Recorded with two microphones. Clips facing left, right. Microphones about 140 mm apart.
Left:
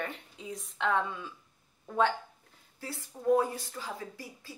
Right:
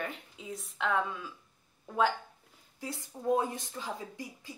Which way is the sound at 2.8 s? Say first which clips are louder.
Left 2 dB; 20° right (ahead or behind).